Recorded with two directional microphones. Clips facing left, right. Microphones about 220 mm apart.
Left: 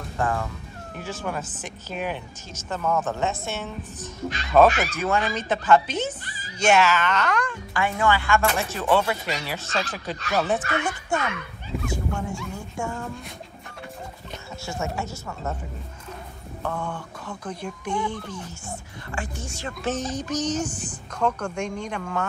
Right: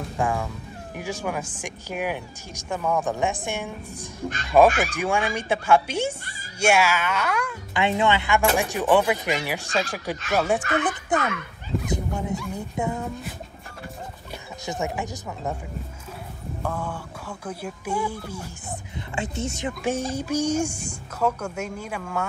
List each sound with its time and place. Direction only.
0.2 s speech: 10° right (ahead or behind)
7.7 s speech: 20° right (ahead or behind)
14.7 s speech: 15° right (ahead or behind)
16.6 s speech: 10° right (ahead or behind)
18.9 s speech: 20° right (ahead or behind); by 22.2 s 5° right (ahead or behind)